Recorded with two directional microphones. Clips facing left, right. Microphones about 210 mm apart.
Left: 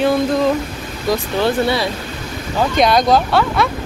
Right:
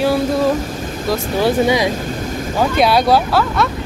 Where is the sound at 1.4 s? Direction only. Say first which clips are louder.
Right 4 dB; 15° right (ahead or behind).